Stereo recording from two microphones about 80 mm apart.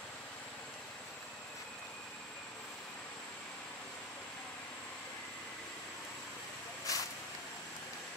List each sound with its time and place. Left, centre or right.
6.9 s vehicle: left